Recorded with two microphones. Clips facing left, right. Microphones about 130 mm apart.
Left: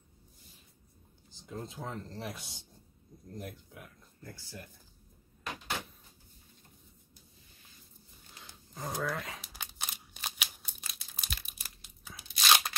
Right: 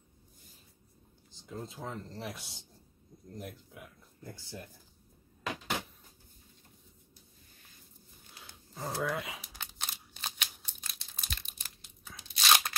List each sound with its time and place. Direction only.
1.3 s speech: centre (ahead or behind)
4.2 s speech: 20° right (ahead or behind)
8.4 s a sound: 5° right (ahead or behind)
9.0 s speech: 5° right (ahead or behind)
9.5 s crumpling: 5° left (ahead or behind)